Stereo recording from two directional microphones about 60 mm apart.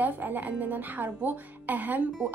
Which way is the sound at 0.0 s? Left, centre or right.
Right.